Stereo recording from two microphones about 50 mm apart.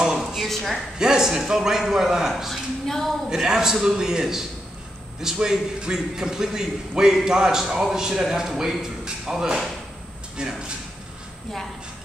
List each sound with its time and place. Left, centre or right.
0.0 s a sound: centre
0.5 s a woman's voice: centre
0.9 s a man's voice: centre